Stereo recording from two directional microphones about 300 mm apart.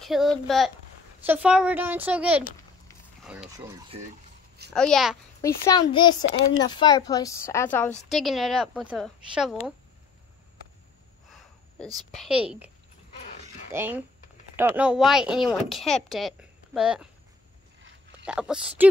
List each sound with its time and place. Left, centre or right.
0.0 s speech: centre
4.7 s a child's voice: centre
5.7 s speech: centre
6.2 s speech: left
6.6 s speech: centre
12.2 s speech: centre
18.2 s speech: centre